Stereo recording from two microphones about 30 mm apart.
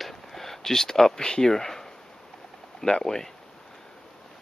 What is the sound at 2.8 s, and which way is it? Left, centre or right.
Speech, centre.